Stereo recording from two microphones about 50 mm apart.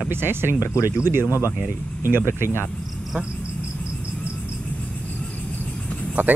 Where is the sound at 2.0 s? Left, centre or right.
Right.